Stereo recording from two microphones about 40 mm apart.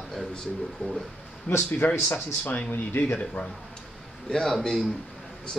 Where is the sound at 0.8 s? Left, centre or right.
Left.